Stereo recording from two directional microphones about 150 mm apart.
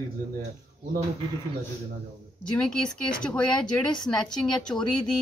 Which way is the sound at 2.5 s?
5° left (ahead or behind).